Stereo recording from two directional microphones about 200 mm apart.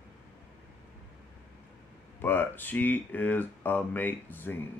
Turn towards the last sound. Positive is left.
turn(degrees=10)  # may be behind; listen again after turning